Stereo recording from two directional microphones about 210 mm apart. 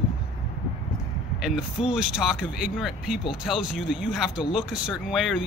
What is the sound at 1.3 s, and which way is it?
Speech, centre (ahead or behind).